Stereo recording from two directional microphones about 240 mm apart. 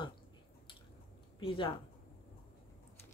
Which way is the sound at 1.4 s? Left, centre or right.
Left.